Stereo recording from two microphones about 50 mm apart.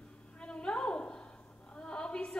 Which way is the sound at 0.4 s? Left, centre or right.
Centre.